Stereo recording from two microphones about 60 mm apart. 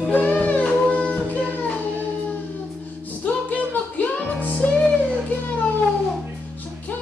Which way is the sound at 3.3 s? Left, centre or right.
Left.